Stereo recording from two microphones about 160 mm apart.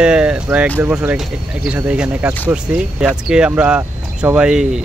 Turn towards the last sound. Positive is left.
turn(degrees=-5)  # may be behind; listen again after turning